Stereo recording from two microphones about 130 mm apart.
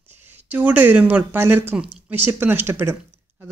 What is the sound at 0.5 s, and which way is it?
Speech, 10° right (ahead or behind).